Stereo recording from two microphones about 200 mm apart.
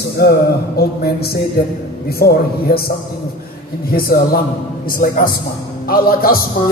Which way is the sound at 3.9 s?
50° left (ahead or behind).